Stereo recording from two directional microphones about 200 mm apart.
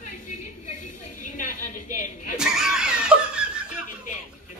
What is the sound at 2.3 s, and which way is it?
Laughter, 5° right (ahead or behind).